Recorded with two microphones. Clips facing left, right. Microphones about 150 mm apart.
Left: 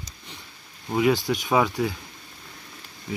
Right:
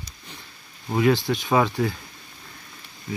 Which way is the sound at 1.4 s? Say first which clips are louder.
Right 1 dB; 5° left (ahead or behind).